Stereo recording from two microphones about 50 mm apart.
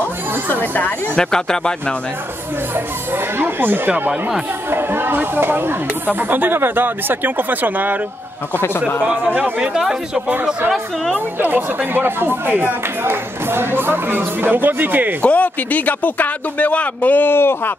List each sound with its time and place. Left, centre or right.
0.5 s speech: left
1.1 s speech: centre
3.3 s speech: right
9.0 s speech: centre
11.1 s speech: right
15.2 s speech: left